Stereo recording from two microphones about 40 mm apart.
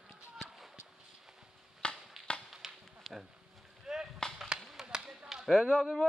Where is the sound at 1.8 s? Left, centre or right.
Left.